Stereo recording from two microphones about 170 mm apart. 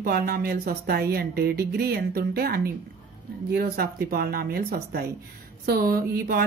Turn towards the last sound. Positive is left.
turn(degrees=-65)  # may be behind; listen again after turning